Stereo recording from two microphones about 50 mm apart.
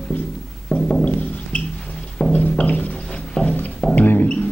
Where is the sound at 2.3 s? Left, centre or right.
Left.